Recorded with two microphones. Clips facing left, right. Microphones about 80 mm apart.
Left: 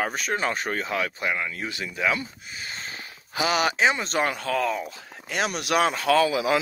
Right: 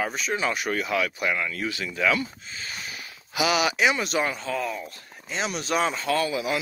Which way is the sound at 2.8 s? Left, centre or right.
Left.